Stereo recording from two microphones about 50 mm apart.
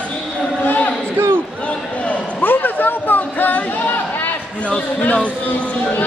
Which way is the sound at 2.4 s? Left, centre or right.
Left.